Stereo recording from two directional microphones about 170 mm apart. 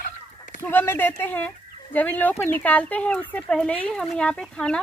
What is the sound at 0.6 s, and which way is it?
Speech, 10° left (ahead or behind).